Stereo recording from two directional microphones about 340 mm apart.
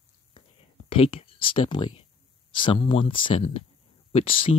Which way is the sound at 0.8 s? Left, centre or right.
Centre.